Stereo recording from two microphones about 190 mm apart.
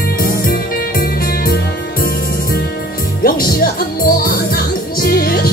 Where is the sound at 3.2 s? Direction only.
50° left (ahead or behind).